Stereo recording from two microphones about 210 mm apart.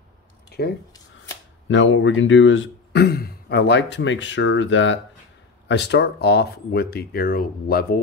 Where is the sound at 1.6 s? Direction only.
65° left (ahead or behind); by 7.9 s 45° left (ahead or behind).